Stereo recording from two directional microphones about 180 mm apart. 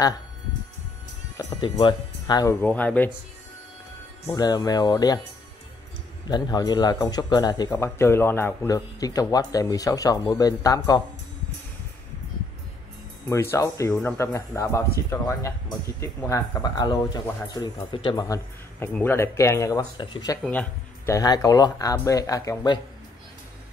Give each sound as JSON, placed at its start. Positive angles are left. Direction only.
{"t": 1.3, "sound": "speech", "side_deg": 20}
{"t": 2.6, "sound": "speech", "side_deg": 10}
{"t": 4.3, "sound": "speech", "side_deg": 20}
{"t": 6.2, "sound": "speech", "side_deg": 20}
{"t": 13.3, "sound": "speech", "side_deg": 15}
{"t": 18.2, "sound": "speech", "side_deg": 15}
{"t": 20.4, "sound": "speech", "side_deg": 10}